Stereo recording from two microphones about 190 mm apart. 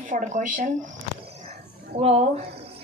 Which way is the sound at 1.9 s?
35° right (ahead or behind).